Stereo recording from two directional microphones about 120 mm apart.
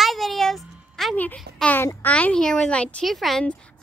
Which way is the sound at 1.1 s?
10° left (ahead or behind).